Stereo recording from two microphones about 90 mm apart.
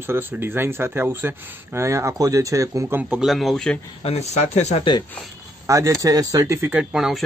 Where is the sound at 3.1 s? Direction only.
5° right (ahead or behind).